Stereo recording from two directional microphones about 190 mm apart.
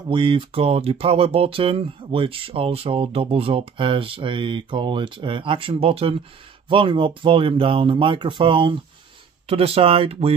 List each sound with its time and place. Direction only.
0.1 s speech: 25° right (ahead or behind)